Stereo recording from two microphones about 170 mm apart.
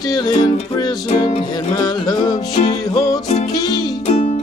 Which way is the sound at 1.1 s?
35° left (ahead or behind).